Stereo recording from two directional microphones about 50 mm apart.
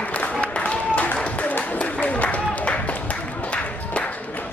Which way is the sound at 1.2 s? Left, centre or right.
Left.